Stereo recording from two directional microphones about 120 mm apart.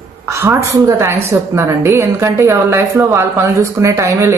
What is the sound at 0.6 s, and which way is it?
Speech, 25° right (ahead or behind).